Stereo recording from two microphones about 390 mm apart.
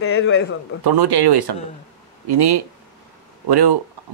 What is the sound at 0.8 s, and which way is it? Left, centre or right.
Speech, right.